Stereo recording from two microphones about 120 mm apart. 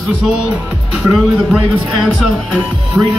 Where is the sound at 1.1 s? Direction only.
Centre (ahead or behind).